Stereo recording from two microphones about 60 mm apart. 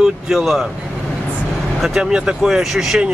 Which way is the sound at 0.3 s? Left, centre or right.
Centre.